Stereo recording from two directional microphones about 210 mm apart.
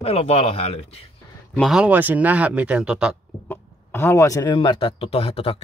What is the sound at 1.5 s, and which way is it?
Speech, centre (ahead or behind).